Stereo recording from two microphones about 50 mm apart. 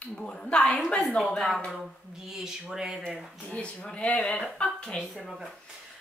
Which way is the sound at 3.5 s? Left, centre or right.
Left.